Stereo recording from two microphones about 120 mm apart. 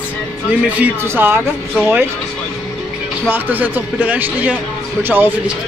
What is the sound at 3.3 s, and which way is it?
Speech, 15° right (ahead or behind).